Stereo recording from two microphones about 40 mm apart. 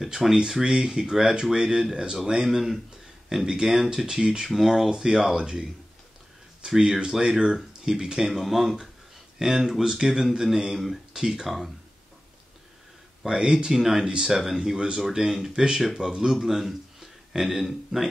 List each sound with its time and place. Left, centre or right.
0.0 s speech: centre
4.5 s speech: centre
6.6 s speech: right
8.3 s speech: centre
13.2 s speech: centre
16.3 s speech: centre